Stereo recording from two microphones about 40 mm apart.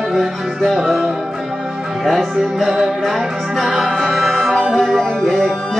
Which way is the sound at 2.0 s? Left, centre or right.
Centre.